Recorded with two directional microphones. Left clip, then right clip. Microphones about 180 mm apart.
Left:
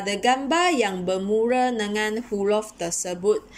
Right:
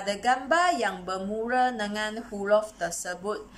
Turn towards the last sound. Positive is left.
turn(degrees=15)  # may be behind; listen again after turning